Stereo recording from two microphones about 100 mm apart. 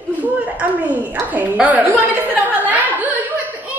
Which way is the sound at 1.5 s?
15° right (ahead or behind).